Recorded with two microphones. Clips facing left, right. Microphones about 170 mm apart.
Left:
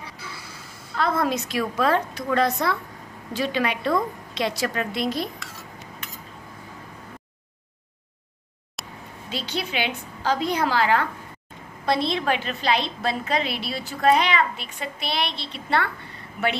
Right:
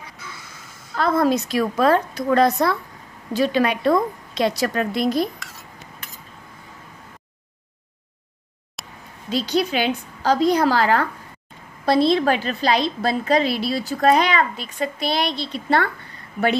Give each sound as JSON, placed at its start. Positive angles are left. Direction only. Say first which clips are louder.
{"t": 0.9, "sound": "a woman's voice", "louder": "right 5 dB", "side_deg": -40}
{"t": 8.8, "sound": "a sound", "louder": "left 1 dB", "side_deg": 0}
{"t": 9.3, "sound": "a woman's voice", "louder": "right 8 dB", "side_deg": -40}